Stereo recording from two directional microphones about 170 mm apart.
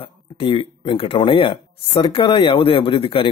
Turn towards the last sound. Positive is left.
turn(degrees=30)  # may be behind; listen again after turning